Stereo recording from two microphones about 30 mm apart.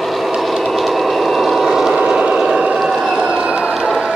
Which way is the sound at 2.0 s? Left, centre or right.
Right.